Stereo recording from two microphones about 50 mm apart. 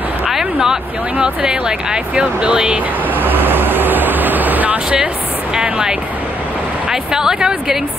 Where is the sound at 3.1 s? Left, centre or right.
Right.